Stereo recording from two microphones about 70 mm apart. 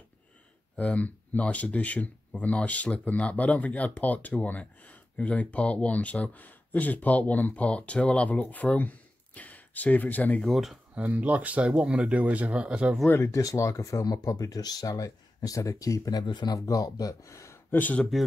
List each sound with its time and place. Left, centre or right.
0.7 s speech: centre
10.4 s speech: centre
11.0 s speech: right
13.3 s speech: left
14.0 s speech: left
16.5 s speech: left
17.6 s speech: left